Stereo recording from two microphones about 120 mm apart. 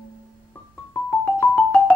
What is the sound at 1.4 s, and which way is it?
Marimba, 10° left (ahead or behind).